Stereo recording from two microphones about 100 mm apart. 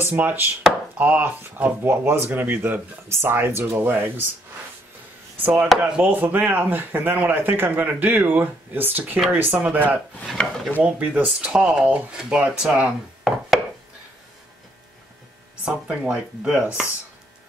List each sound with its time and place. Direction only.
0.0 s speech: 15° right (ahead or behind)
5.4 s speech: 20° right (ahead or behind)
10.2 s wood: 5° left (ahead or behind)
10.8 s speech: 15° right (ahead or behind)
15.6 s speech: 10° right (ahead or behind)